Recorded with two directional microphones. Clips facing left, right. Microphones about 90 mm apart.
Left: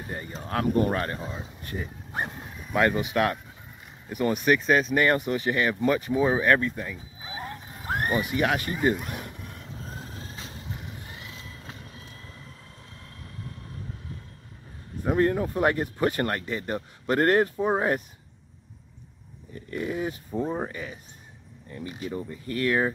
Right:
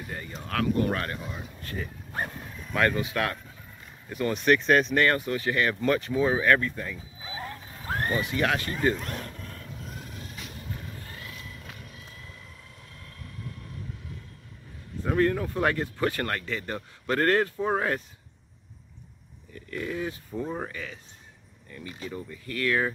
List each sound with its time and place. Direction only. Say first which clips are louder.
0.0 s speech: left 2 dB; 30° left (ahead or behind); by 5.0 s 5° left (ahead or behind)
5.0 s a sound: left 2 dB; 20° left (ahead or behind)
13.0 s vehicle: right 1 dB; 30° left (ahead or behind)
15.0 s speech: left 1 dB; 25° left (ahead or behind)
19.5 s speech: left 2 dB; 20° left (ahead or behind)